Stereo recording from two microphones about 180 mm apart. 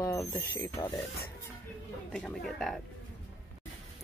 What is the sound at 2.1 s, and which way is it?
Speech, centre (ahead or behind).